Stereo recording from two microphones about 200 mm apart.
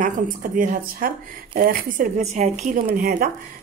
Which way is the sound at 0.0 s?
45° right (ahead or behind).